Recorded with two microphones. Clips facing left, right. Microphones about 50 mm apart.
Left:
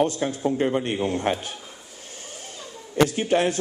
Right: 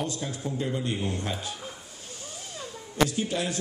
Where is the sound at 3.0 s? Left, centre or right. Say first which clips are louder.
Left 6 dB; left.